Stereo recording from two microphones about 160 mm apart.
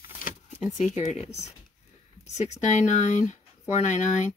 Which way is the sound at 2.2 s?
45° left (ahead or behind).